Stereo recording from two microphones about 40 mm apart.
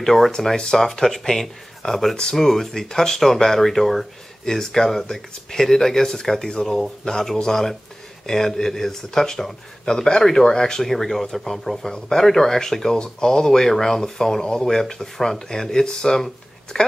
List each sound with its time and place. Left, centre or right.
0.0 s speech: centre